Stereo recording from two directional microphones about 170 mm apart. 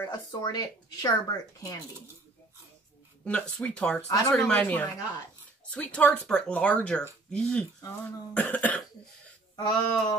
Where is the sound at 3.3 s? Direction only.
5° left (ahead or behind).